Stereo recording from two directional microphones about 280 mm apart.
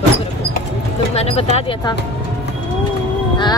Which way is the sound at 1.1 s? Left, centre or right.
Left.